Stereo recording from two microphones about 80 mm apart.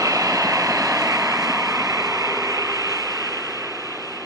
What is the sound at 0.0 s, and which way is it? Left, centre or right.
Vehicle, right.